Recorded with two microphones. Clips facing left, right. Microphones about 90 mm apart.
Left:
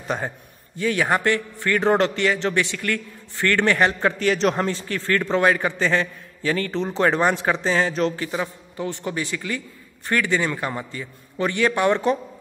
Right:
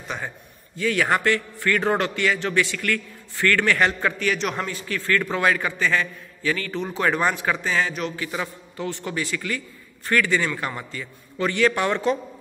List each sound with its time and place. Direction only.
0.7 s a man's voice: 30° left (ahead or behind)